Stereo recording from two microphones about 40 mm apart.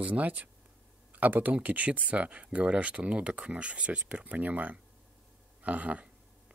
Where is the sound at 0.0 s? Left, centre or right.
Right.